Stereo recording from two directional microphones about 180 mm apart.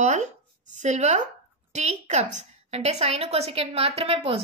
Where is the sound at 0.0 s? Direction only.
40° right (ahead or behind).